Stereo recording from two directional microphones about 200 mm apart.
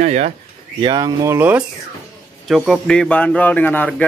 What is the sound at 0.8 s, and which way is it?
Speech, 20° right (ahead or behind).